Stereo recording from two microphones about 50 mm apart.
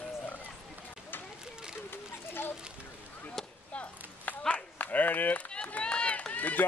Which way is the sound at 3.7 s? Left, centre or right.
Left.